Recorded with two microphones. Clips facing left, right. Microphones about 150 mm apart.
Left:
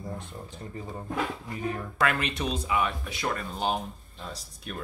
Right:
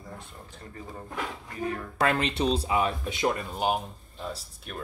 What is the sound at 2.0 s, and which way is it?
Speech, 30° right (ahead or behind).